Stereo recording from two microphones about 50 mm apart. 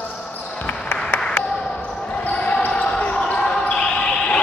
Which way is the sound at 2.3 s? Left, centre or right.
Left.